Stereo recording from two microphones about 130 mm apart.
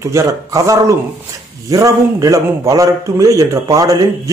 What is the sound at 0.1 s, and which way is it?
A man's voice, 25° right (ahead or behind).